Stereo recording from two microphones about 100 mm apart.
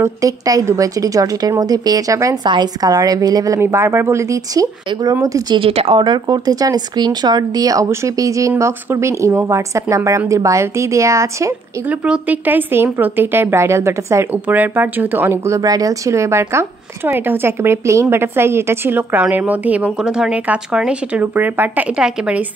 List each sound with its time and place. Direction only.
0.0 s speech: 35° right (ahead or behind)
2.4 s speech: 45° right (ahead or behind)
5.5 s speech: 75° right (ahead or behind)
5.9 s speech: 45° right (ahead or behind); by 11.5 s 30° right (ahead or behind)
11.9 s speech: 15° right (ahead or behind)
14.3 s speech: 20° right (ahead or behind)